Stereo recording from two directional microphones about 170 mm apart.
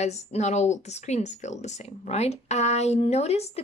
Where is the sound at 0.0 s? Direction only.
40° left (ahead or behind).